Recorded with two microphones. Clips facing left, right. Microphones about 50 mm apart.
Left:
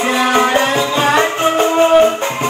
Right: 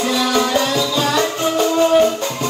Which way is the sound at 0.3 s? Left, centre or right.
Left.